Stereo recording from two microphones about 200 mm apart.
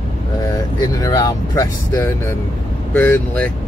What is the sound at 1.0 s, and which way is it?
Speech, 20° left (ahead or behind).